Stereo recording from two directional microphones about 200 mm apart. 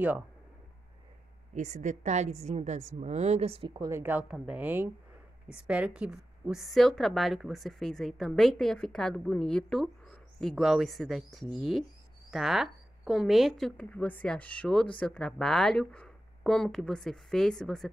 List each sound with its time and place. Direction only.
1.5 s a woman's voice: 35° right (ahead or behind); by 17.8 s 5° left (ahead or behind)